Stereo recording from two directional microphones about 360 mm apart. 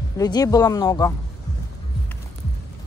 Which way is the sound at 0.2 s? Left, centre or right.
Centre.